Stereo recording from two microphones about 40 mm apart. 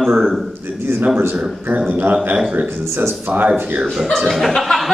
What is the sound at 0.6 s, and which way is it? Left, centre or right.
Speech, right.